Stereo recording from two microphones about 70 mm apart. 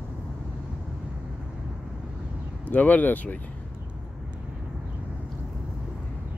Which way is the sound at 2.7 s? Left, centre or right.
Left.